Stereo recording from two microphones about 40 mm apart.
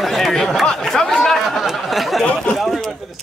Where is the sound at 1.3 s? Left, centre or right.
Centre.